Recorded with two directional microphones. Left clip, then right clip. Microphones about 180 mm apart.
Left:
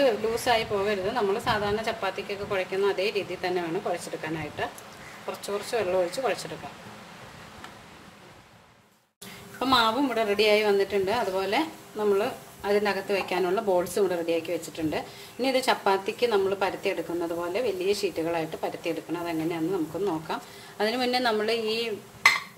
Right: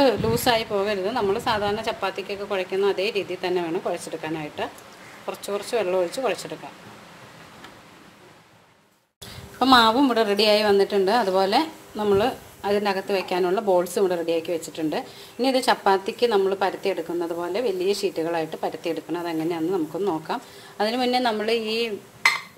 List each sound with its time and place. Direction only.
0.0 s a woman's voice: 40° right (ahead or behind)
9.6 s a woman's voice: 35° right (ahead or behind)
13.3 s a woman's voice: 20° right (ahead or behind)
20.7 s a woman's voice: 20° right (ahead or behind); by 21.9 s 35° right (ahead or behind)